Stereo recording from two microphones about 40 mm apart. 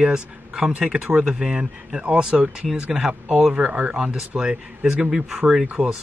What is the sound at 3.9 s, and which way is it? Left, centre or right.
Speech, centre.